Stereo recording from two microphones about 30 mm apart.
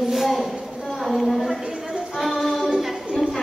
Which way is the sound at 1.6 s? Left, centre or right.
Right.